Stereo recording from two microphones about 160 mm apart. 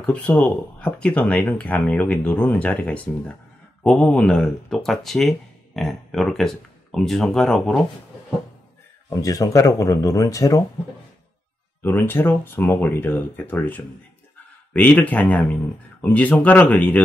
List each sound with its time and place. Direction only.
0.0 s speech: 5° left (ahead or behind)
9.1 s speech: 20° left (ahead or behind)
11.8 s speech: 15° left (ahead or behind)